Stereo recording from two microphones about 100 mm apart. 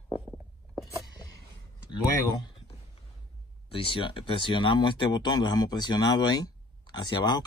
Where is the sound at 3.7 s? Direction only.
65° left (ahead or behind).